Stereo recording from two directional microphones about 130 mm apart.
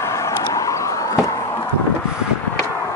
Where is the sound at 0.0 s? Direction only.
20° left (ahead or behind).